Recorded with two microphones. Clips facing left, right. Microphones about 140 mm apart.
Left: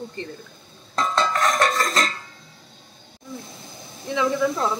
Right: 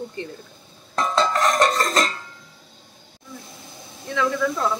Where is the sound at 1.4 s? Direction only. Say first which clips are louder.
Right 2 dB; 15° right (ahead or behind).